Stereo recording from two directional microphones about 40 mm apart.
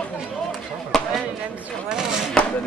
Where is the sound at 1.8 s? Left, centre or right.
Centre.